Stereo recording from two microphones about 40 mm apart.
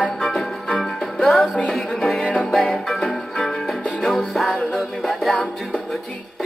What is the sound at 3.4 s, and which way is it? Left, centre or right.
Music, left.